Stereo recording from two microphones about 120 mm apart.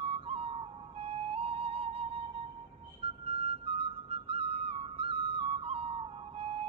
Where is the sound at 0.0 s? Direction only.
50° right (ahead or behind).